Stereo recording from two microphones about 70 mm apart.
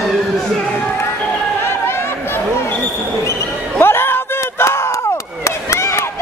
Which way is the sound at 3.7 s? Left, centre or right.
Left.